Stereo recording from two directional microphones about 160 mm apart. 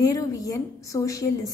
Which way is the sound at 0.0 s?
20° left (ahead or behind).